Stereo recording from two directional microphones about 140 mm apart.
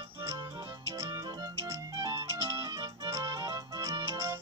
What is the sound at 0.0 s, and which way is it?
Music, 20° right (ahead or behind).